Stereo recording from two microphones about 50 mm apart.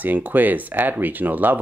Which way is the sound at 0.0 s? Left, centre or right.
Right.